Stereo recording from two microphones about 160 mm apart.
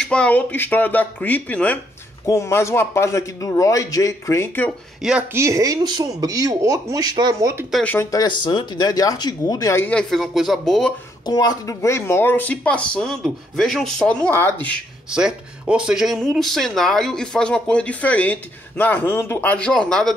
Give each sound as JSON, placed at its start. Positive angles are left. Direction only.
{"t": 0.1, "sound": "a man's voice", "side_deg": 10}
{"t": 5.3, "sound": "speech", "side_deg": -20}
{"t": 7.7, "sound": "speech", "side_deg": 10}
{"t": 11.2, "sound": "speech", "side_deg": 25}
{"t": 15.0, "sound": "speech", "side_deg": -5}